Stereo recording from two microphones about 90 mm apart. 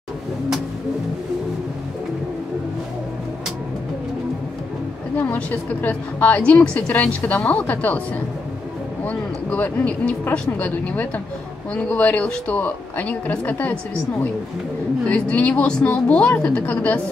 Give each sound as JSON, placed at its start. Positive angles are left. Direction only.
{"t": 5.1, "sound": "a woman's voice", "side_deg": 20}
{"t": 9.0, "sound": "a woman's voice", "side_deg": 15}
{"t": 15.0, "sound": "a woman's voice", "side_deg": 15}